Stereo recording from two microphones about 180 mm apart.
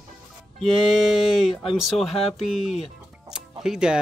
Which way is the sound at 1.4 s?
Centre (ahead or behind).